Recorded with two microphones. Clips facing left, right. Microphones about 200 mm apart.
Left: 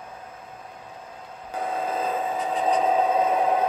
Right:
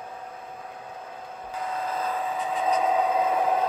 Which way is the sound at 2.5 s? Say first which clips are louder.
Left 2 dB; 30° left (ahead or behind).